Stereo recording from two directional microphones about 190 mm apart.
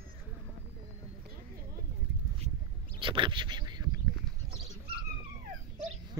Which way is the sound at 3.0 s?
25° right (ahead or behind).